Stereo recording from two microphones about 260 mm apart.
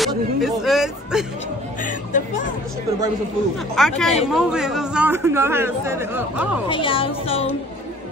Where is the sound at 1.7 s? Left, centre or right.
Left.